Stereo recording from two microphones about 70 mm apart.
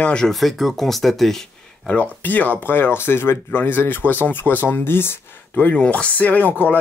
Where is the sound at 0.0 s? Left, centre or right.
Centre.